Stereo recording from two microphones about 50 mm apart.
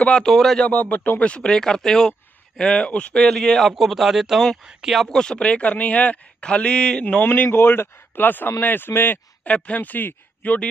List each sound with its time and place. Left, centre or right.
0.3 s a man's voice: centre
0.7 s speech: left
1.2 s a man's voice: left
3.2 s a man's voice: centre
5.1 s a man's voice: centre
7.5 s speech: left
9.4 s speech: left